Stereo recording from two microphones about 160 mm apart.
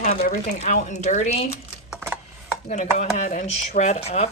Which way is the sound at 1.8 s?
5° right (ahead or behind).